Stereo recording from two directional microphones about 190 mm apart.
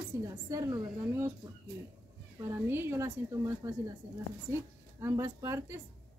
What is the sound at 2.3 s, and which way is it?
A woman's voice, 15° right (ahead or behind).